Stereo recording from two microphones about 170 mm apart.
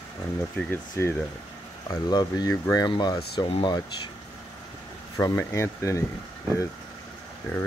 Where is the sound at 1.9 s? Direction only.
25° left (ahead or behind).